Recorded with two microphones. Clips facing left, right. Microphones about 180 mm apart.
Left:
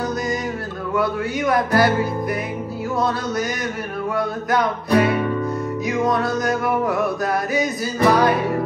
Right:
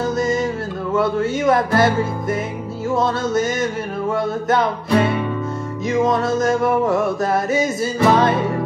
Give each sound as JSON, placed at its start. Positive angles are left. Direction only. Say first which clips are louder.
{"t": 1.4, "sound": "music", "louder": "right 1 dB", "side_deg": -25}
{"t": 4.5, "sound": "music", "louder": "right 1 dB", "side_deg": -25}
{"t": 6.3, "sound": "music", "louder": "right 4 dB", "side_deg": -25}
{"t": 7.8, "sound": "music", "louder": "even", "side_deg": -25}